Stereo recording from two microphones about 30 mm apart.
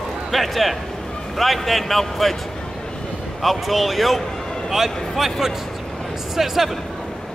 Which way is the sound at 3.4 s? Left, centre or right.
Centre.